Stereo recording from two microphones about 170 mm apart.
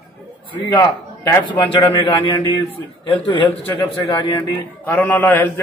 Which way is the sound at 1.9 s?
30° left (ahead or behind).